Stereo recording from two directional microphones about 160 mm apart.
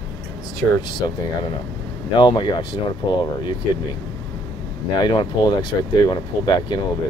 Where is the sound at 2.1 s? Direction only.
30° left (ahead or behind).